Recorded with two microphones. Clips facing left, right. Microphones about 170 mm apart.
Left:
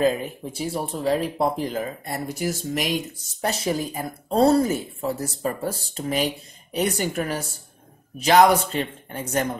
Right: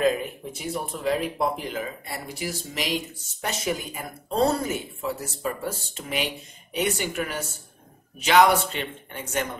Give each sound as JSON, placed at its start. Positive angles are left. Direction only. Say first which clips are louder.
{"t": 0.0, "sound": "speech", "louder": "left 2 dB", "side_deg": 35}
{"t": 3.3, "sound": "speech", "louder": "left 4 dB", "side_deg": 35}